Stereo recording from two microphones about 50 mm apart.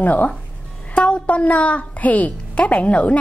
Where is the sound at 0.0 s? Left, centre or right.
Left.